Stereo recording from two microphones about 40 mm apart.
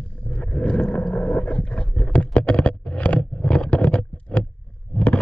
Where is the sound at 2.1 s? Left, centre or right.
Left.